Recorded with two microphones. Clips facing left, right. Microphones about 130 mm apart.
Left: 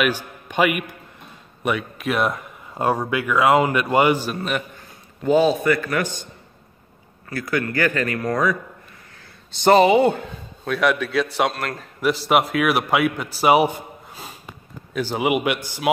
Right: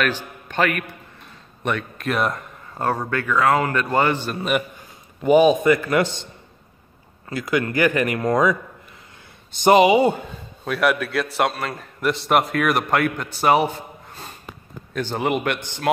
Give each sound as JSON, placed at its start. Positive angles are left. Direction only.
{"t": 0.0, "sound": "a man's voice", "side_deg": 10}
{"t": 5.2, "sound": "a man's voice", "side_deg": -15}
{"t": 7.2, "sound": "speech", "side_deg": -20}
{"t": 9.6, "sound": "a man's voice", "side_deg": -15}